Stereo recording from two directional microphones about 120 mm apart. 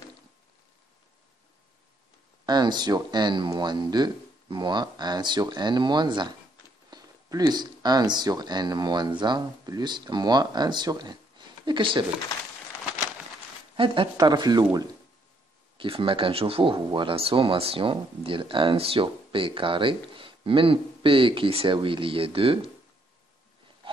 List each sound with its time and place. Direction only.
2.4 s speech: 35° right (ahead or behind)
13.7 s speech: 45° right (ahead or behind)
15.8 s speech: 45° right (ahead or behind)